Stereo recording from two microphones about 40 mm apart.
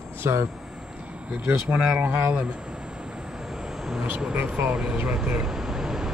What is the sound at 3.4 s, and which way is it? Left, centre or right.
Vehicle, centre.